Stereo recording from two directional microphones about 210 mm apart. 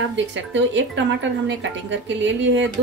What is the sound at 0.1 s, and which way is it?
A woman's voice, 60° right (ahead or behind).